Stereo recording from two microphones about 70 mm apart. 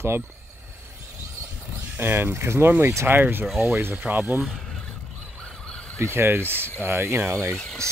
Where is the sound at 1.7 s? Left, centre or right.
Right.